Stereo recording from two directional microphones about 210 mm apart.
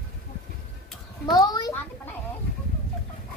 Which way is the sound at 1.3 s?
20° left (ahead or behind).